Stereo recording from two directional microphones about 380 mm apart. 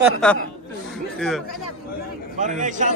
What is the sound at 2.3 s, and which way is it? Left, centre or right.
Speech, centre.